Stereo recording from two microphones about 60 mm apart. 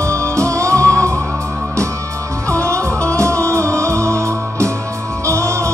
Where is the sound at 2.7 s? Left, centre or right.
Right.